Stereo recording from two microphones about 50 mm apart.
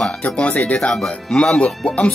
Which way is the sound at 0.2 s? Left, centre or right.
Left.